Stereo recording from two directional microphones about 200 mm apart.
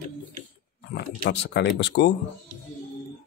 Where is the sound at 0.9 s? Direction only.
60° left (ahead or behind).